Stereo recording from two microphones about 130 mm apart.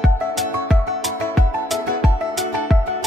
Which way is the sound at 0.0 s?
Centre (ahead or behind).